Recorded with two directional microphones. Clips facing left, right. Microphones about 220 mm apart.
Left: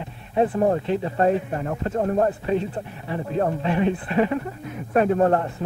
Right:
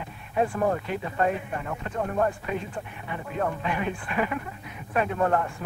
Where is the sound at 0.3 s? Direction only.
30° left (ahead or behind).